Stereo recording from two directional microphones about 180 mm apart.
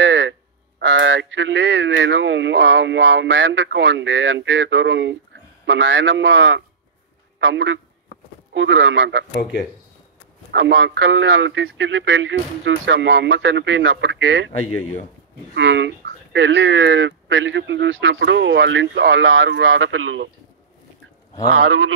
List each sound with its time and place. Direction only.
0.0 s a man's voice: 90° right
10.5 s speech: 90° right
15.5 s speech: 80° right